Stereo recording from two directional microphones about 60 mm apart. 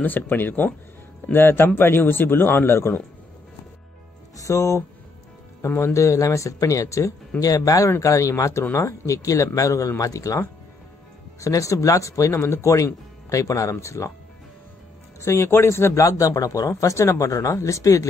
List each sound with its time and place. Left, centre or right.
0.0 s a man's voice: left
4.4 s speech: left
5.7 s a man's voice: left
5.9 s speech: left
8.0 s speech: left
15.1 s speech: left
16.9 s speech: left
17.3 s speech: left